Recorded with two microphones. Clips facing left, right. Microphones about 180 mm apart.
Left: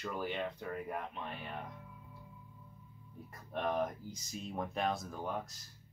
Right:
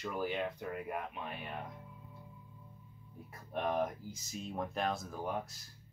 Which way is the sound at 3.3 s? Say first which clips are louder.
Right 1 dB; 5° right (ahead or behind).